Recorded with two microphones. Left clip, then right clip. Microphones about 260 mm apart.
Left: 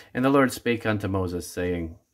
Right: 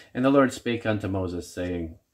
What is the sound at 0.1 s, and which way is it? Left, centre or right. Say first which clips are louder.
Speech: even; centre.